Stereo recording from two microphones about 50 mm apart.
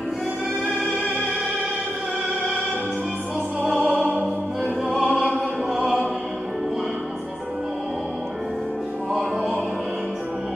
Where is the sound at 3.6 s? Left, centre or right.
Right.